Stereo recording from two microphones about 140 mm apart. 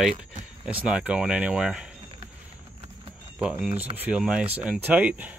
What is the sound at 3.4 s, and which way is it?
Speech, 10° right (ahead or behind).